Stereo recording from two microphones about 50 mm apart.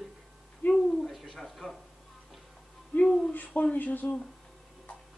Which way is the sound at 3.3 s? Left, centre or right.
Left.